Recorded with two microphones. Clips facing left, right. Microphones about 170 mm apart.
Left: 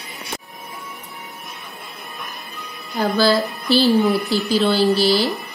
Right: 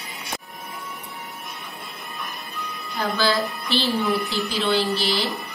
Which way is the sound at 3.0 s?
35° left (ahead or behind).